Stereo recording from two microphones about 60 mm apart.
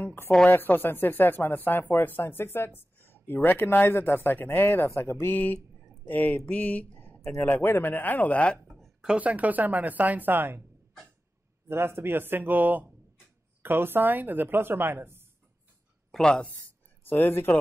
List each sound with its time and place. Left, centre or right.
0.0 s speech: left
5.2 s speech: left
8.6 s a sound: centre
9.0 s speech: centre; by 10.6 s right
11.7 s speech: right
16.1 s speech: centre
16.4 s speech: left